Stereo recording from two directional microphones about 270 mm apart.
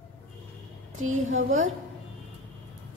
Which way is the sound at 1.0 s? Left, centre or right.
Right.